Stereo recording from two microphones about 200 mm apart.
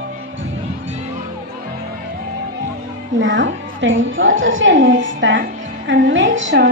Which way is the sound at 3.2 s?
65° right (ahead or behind).